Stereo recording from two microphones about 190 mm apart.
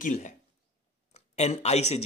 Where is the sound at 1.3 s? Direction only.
35° left (ahead or behind).